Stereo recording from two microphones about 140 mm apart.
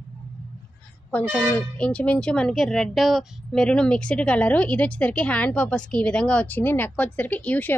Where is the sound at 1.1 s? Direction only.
5° left (ahead or behind).